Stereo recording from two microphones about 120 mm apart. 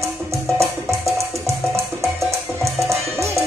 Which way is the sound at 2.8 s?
25° right (ahead or behind).